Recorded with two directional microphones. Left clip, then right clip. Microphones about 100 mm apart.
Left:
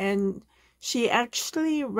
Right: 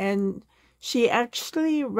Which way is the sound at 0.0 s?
35° right (ahead or behind).